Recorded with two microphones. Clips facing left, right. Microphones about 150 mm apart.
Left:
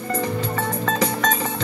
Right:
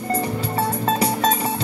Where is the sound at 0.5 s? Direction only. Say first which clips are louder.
Right 2 dB; 35° right (ahead or behind).